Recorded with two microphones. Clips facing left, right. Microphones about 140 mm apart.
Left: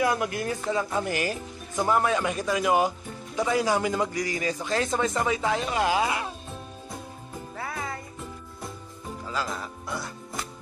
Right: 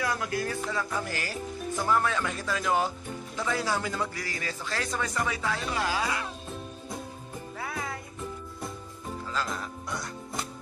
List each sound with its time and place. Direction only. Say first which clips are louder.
0.0 s a man's voice: left 4 dB; 20° left (ahead or behind)
7.5 s music: left 2 dB; centre (ahead or behind)
9.3 s speech: left 2 dB; 5° left (ahead or behind)